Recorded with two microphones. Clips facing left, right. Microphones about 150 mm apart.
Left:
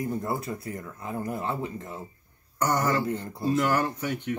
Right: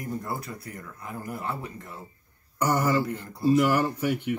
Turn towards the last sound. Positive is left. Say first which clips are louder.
# right 3 dB
turn(degrees=-10)  # may be behind; listen again after turning